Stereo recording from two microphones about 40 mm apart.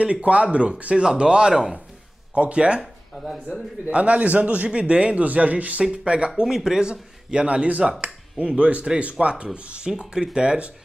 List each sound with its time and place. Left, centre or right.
0.0 s a man's voice: right
2.3 s a man's voice: right
3.8 s speech: right
5.9 s a man's voice: right
7.4 s a man's voice: right